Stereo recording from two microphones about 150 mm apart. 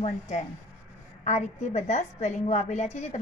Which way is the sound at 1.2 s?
50° left (ahead or behind).